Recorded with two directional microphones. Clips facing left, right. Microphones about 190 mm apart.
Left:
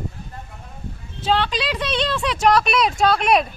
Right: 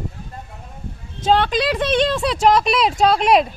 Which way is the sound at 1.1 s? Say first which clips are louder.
Right 4 dB; 45° right (ahead or behind).